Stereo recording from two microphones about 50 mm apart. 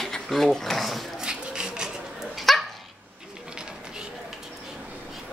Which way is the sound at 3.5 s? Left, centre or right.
Centre.